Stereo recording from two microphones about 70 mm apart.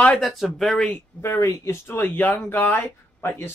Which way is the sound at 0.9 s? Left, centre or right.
Left.